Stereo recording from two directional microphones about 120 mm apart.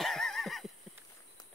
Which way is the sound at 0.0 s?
5° left (ahead or behind).